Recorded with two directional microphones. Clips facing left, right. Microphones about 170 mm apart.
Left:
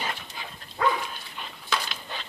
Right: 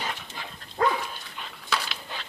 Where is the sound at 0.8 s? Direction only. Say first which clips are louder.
Right 1 dB; 40° right (ahead or behind).